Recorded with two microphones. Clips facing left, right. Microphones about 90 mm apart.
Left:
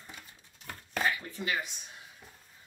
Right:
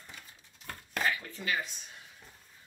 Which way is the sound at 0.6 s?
5° left (ahead or behind).